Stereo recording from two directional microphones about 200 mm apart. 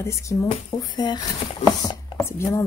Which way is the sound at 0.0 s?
15° left (ahead or behind).